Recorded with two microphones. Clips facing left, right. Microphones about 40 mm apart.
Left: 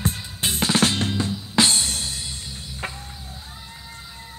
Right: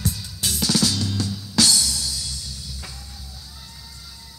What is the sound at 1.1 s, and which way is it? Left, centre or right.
Music, left.